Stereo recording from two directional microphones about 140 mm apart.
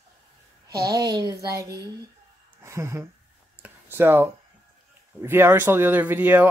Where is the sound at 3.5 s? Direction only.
15° right (ahead or behind).